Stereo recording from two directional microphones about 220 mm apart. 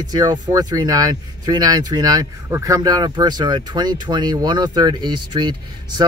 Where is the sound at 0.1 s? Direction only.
15° right (ahead or behind).